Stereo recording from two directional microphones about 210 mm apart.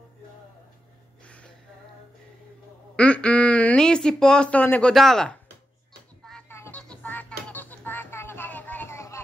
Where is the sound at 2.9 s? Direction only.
5° left (ahead or behind).